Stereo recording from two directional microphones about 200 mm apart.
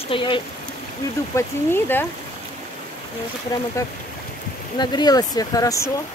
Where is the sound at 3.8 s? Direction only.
15° left (ahead or behind).